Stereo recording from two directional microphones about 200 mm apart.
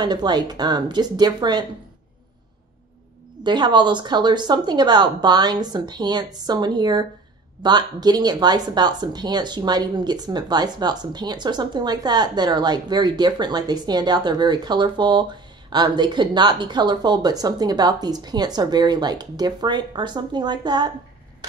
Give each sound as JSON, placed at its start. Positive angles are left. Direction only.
{"t": 0.0, "sound": "speech", "side_deg": -20}
{"t": 3.4, "sound": "speech", "side_deg": -20}